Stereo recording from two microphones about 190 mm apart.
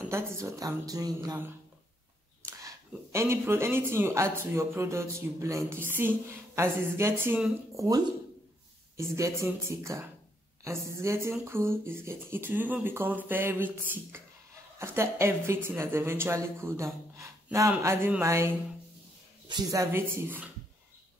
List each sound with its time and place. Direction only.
0.1 s speech: 15° right (ahead or behind)
2.9 s speech: 15° right (ahead or behind)
8.9 s speech: 15° right (ahead or behind)